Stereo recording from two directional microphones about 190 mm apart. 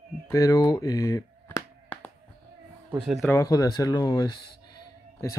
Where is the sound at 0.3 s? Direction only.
15° left (ahead or behind).